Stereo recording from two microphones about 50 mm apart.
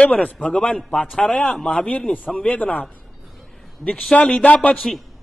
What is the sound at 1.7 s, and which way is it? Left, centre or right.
A man's voice, left.